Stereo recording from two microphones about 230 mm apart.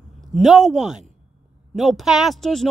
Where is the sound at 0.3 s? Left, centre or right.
Centre.